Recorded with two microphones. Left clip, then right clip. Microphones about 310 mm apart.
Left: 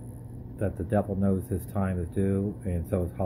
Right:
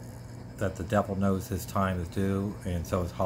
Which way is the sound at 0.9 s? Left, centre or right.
Centre.